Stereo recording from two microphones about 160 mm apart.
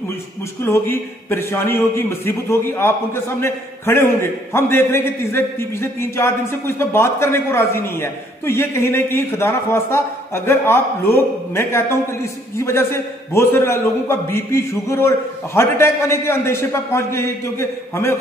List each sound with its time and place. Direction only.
0.7 s a man's voice: 15° left (ahead or behind)